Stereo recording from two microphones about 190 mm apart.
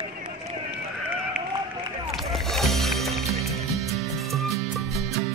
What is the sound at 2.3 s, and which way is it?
Music, centre (ahead or behind).